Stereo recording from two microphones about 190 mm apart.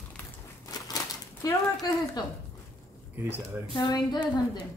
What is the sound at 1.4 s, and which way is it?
Speech, 20° left (ahead or behind).